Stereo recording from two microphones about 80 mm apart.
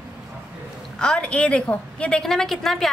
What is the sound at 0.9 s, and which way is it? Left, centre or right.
A woman's voice, centre.